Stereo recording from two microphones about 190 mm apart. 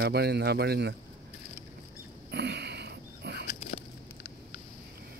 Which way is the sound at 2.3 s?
60° right (ahead or behind).